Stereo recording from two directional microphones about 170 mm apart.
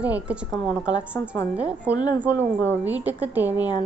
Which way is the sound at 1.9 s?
25° left (ahead or behind).